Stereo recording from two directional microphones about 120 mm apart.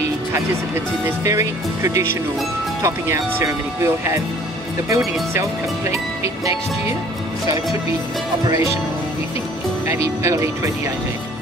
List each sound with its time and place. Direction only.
1.0 s speech: 25° right (ahead or behind)
8.5 s speech: 25° right (ahead or behind)
9.8 s speech: 25° right (ahead or behind)